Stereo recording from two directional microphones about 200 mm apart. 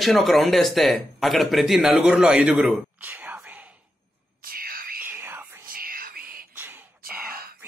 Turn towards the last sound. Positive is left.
turn(degrees=-45)  # may be behind; listen again after turning